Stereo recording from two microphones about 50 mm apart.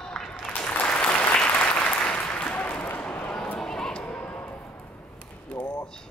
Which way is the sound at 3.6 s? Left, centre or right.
Centre.